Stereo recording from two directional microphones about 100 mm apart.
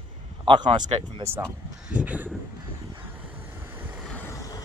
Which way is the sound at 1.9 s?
15° right (ahead or behind).